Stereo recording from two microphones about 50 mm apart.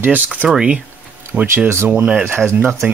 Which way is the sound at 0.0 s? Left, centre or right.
Right.